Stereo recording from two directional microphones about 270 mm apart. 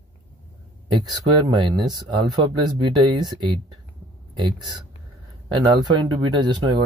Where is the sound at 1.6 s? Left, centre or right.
Centre.